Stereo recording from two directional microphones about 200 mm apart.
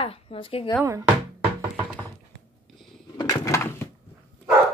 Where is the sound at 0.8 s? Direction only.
15° right (ahead or behind).